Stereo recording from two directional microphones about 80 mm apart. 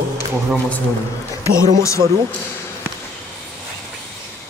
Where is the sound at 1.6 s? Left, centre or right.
Left.